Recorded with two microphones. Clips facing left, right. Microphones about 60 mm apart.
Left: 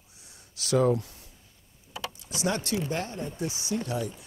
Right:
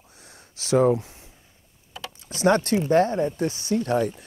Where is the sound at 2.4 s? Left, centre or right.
Right.